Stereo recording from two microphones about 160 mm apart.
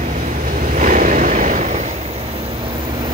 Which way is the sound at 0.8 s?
55° right (ahead or behind).